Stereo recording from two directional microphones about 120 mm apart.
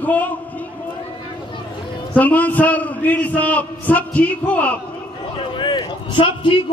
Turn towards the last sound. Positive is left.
turn(degrees=45)  # may be behind; listen again after turning